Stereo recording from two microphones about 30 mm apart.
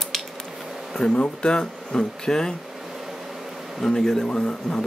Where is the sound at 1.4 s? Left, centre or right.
Left.